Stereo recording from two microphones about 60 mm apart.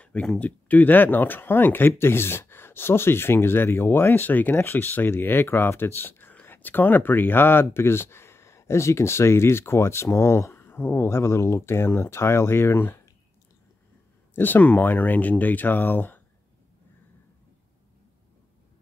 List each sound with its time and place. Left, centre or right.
0.0 s speech: centre; by 13.0 s left
14.3 s speech: left